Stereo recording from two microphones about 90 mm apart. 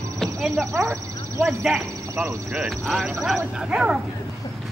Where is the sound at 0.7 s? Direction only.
35° right (ahead or behind).